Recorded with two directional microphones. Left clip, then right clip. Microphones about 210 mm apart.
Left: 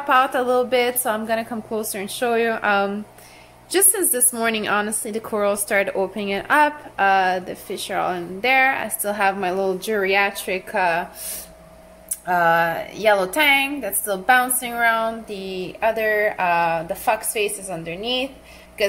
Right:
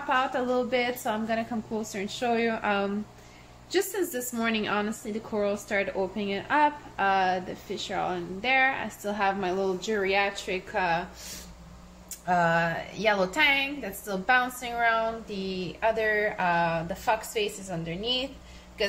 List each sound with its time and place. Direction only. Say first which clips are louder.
0.1 s a woman's voice: left 9 dB; 25° left (ahead or behind)
12.3 s a woman's voice: left 7 dB; 25° left (ahead or behind)